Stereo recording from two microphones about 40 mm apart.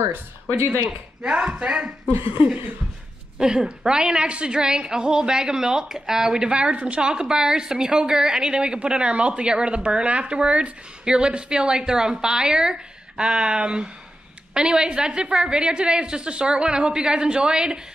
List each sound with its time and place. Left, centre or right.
0.8 s a woman's voice: right
3.3 s a woman's voice: centre